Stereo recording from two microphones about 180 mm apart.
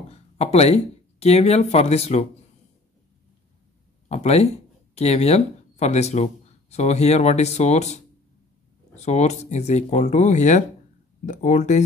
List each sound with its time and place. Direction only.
0.1 s a sound: 35° left (ahead or behind)
1.2 s speech: 35° left (ahead or behind)
4.1 s speech: 35° left (ahead or behind)